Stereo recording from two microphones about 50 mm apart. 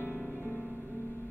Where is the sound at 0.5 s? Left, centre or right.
Right.